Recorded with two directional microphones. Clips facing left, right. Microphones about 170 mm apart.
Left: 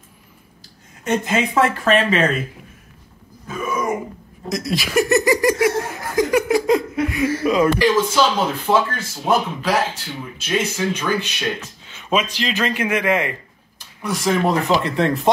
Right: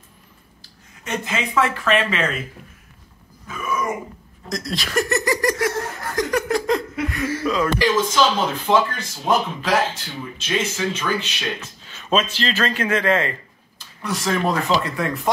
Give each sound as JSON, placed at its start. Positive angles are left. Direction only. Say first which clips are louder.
{"t": 1.0, "sound": "speech", "louder": "left 6 dB", "side_deg": 45}
{"t": 4.5, "sound": "speech", "louder": "left 4 dB", "side_deg": 5}